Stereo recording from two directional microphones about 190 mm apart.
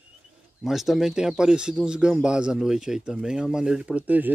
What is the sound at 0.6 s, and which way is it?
Speech, centre (ahead or behind).